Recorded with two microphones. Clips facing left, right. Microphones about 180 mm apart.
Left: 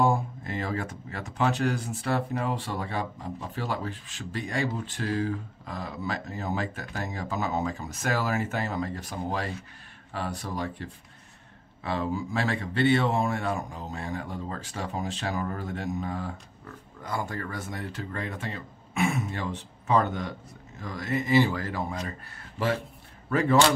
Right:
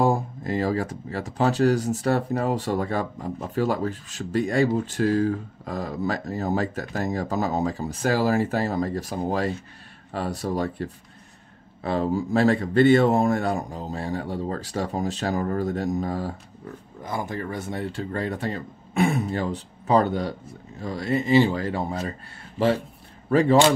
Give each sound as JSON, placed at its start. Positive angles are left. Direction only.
{"t": 0.0, "sound": "speech", "side_deg": -40}
{"t": 17.0, "sound": "speech", "side_deg": -20}
{"t": 23.3, "sound": "speech", "side_deg": -25}